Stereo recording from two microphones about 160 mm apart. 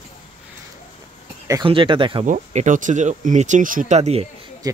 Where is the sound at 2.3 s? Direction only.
55° right (ahead or behind).